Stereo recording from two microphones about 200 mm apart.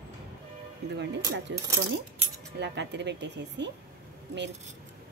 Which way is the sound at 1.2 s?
15° right (ahead or behind).